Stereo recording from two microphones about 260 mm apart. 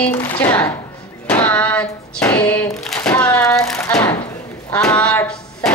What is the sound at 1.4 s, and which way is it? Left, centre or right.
Female singing, centre.